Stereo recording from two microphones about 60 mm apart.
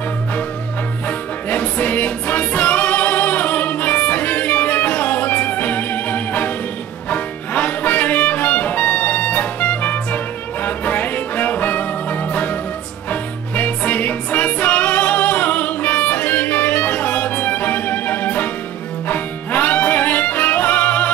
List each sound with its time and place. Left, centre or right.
1.0 s music: left